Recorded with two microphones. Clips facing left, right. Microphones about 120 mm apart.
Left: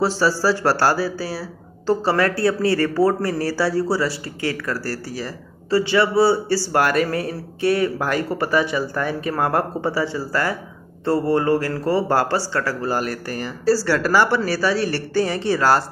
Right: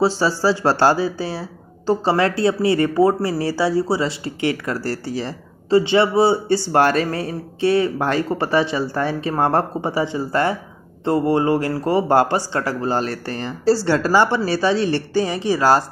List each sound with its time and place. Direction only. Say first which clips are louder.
0.0 s speech: right 1 dB; 15° right (ahead or behind)